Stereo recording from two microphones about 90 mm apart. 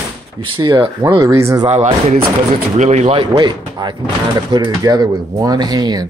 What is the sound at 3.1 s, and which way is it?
Speech, 65° right (ahead or behind).